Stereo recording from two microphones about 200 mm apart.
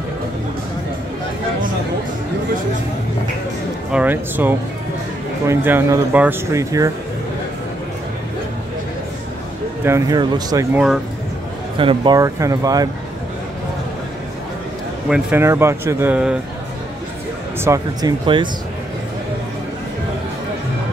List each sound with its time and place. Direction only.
3.9 s speech: 10° right (ahead or behind)
9.8 s speech: 15° right (ahead or behind)
11.8 s speech: 25° right (ahead or behind)
15.0 s speech: 5° right (ahead or behind)
17.6 s speech: 20° right (ahead or behind)